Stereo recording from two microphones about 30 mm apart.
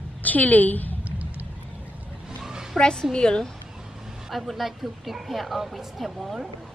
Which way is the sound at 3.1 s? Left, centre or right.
Left.